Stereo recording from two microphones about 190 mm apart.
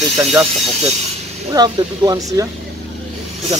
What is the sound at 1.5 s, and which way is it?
Speech, 20° right (ahead or behind).